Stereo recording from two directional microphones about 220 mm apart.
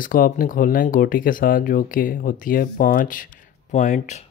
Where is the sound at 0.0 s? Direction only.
40° left (ahead or behind).